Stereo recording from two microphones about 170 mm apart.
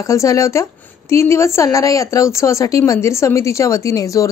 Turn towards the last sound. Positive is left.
turn(degrees=20)  # may be behind; listen again after turning